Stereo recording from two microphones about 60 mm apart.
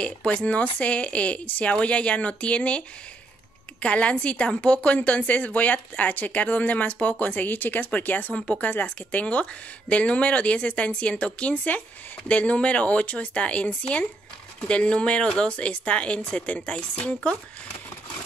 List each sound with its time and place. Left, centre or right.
0.0 s a woman's voice: left
3.8 s a woman's voice: left